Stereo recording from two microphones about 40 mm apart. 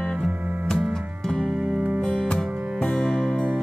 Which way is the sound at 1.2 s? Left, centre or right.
Centre.